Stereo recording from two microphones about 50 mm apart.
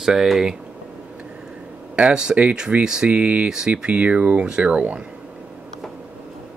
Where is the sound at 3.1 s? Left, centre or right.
Right.